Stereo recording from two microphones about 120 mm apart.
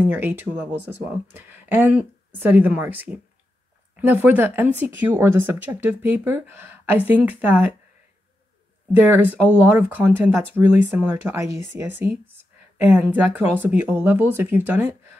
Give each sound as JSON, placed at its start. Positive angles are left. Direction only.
{"t": 0.0, "sound": "speech", "side_deg": -15}
{"t": 8.9, "sound": "speech", "side_deg": -15}